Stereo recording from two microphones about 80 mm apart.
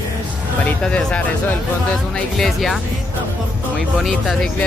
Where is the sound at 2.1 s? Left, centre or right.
Centre.